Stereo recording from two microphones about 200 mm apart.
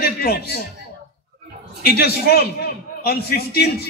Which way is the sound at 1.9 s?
50° left (ahead or behind).